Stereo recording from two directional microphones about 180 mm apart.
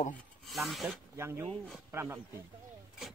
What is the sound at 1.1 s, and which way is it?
Speech, 15° right (ahead or behind).